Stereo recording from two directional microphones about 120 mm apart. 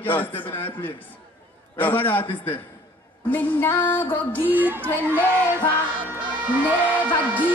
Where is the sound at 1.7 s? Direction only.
15° left (ahead or behind).